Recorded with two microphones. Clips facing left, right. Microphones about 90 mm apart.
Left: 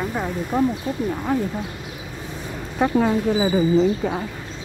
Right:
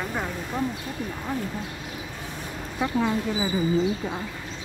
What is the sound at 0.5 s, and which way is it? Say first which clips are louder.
Speech: left 8 dB; 50° left (ahead or behind).